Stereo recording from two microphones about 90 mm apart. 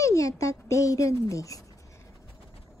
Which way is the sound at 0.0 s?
35° left (ahead or behind).